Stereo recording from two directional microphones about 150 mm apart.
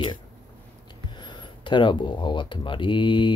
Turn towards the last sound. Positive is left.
turn(degrees=35)  # may be behind; listen again after turning